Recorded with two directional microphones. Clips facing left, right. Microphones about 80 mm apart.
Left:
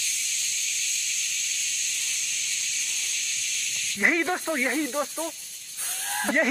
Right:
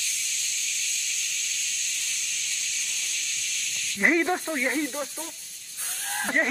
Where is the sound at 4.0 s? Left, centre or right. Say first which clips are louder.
Right 2 dB; centre.